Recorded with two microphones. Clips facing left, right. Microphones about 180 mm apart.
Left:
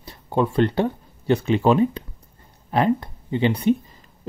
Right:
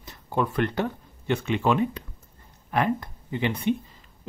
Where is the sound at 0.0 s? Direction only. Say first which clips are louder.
Left 5 dB; 30° left (ahead or behind).